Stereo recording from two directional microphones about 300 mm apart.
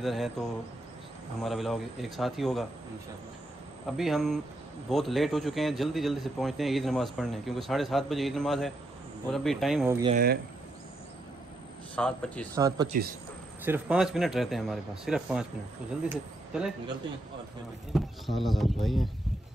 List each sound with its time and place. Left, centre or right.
0.0 s a man's voice: centre
1.4 s a man's voice: centre
3.8 s a man's voice: centre
10.1 s speech: right
11.9 s a man's voice: centre
12.5 s a man's voice: centre
17.9 s a man's voice: centre